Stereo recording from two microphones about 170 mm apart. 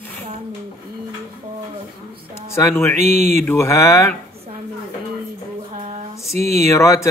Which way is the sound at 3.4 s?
15° left (ahead or behind).